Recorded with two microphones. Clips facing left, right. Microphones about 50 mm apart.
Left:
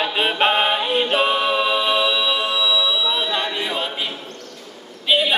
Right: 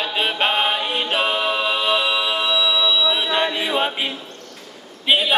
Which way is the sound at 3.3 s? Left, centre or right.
Centre.